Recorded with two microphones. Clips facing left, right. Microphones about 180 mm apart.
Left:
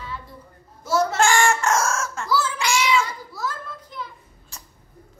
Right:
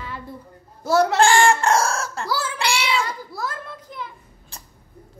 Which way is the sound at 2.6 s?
35° right (ahead or behind).